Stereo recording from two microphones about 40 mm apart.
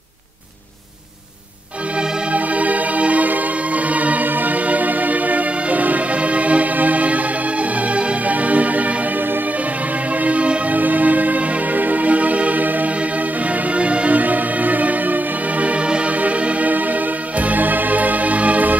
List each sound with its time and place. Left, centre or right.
2.3 s music: right
10.2 s music: right
10.8 s music: right
13.7 s music: right